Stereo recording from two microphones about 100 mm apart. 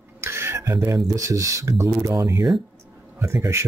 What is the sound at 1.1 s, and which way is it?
Speech, 35° right (ahead or behind).